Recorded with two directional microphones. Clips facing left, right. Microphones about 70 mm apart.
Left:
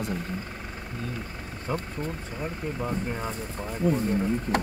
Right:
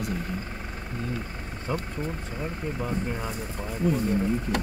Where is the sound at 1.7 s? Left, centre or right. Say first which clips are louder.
Even; centre.